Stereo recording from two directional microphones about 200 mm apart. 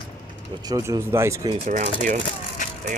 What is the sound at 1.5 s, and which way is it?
Speech, 35° right (ahead or behind).